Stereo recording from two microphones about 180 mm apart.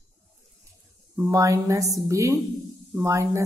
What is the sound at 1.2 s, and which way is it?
A woman's voice, 20° right (ahead or behind).